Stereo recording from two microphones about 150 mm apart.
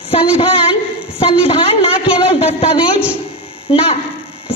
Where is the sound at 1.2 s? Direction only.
35° left (ahead or behind).